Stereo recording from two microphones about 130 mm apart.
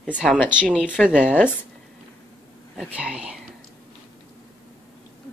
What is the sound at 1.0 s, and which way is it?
Speech, 10° right (ahead or behind).